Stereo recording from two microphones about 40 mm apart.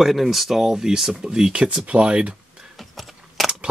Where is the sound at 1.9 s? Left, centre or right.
Right.